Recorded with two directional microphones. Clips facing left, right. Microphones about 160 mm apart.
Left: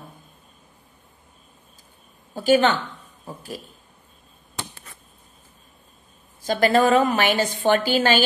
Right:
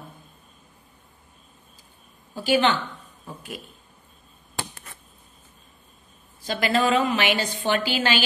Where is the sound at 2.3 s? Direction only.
45° left (ahead or behind).